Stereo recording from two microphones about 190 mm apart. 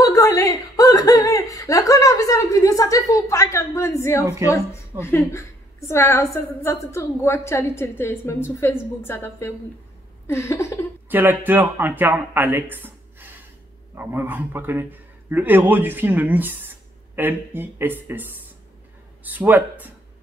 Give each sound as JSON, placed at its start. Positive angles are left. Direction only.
{"t": 0.0, "sound": "a woman's voice", "side_deg": 20}
{"t": 11.1, "sound": "speech", "side_deg": -10}
{"t": 19.3, "sound": "speech", "side_deg": -10}